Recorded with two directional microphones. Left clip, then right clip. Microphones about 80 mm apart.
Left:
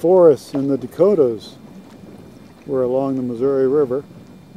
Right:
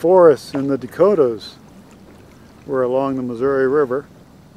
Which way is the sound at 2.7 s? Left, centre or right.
Centre.